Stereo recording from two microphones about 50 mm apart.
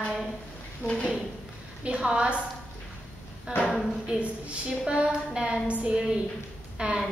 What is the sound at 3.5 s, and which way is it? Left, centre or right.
A woman's voice, right.